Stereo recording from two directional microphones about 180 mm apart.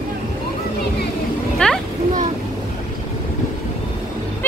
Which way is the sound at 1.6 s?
5° left (ahead or behind).